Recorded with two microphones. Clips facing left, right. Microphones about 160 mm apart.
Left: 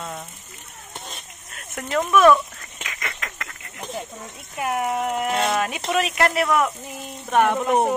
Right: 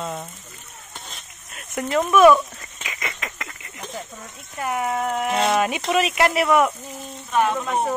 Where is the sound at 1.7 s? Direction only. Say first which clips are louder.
Right 2 dB; 5° right (ahead or behind).